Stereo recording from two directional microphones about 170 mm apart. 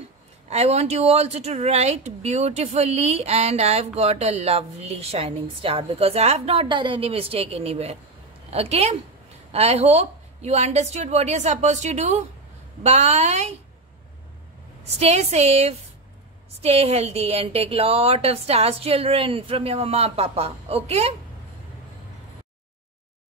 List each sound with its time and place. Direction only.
0.5 s a woman's voice: 40° right (ahead or behind)
15.0 s speech: 40° right (ahead or behind)